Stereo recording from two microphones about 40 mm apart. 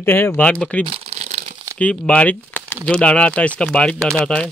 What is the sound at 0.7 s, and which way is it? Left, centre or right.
Speech, left.